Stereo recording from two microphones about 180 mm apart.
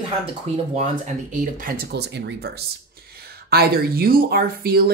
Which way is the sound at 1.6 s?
55° right (ahead or behind).